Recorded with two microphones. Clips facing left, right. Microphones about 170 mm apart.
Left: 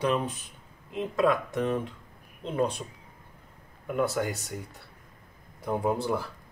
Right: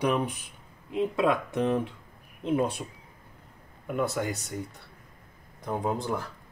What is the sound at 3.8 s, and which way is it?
Speech, centre (ahead or behind).